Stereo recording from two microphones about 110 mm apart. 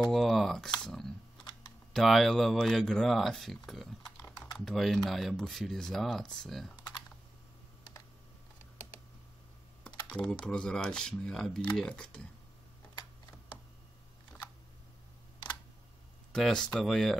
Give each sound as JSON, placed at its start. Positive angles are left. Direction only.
{"t": 0.0, "sound": "a sound", "side_deg": 0}
{"t": 2.0, "sound": "speech", "side_deg": 0}
{"t": 4.3, "sound": "typing", "side_deg": 35}
{"t": 4.6, "sound": "speech", "side_deg": 0}
{"t": 10.0, "sound": "typing", "side_deg": 10}
{"t": 10.4, "sound": "speech", "side_deg": 5}
{"t": 16.3, "sound": "speech", "side_deg": 5}